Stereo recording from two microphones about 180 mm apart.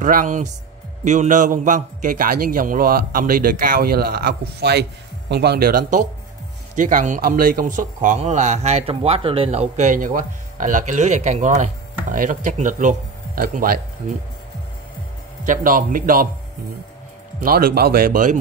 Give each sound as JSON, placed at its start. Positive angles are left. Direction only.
{"t": 0.0, "sound": "speech", "side_deg": -45}
{"t": 15.4, "sound": "speech", "side_deg": -45}
{"t": 17.4, "sound": "speech", "side_deg": -55}